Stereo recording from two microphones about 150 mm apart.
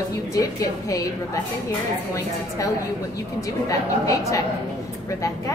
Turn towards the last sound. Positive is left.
turn(degrees=20)  # may be behind; listen again after turning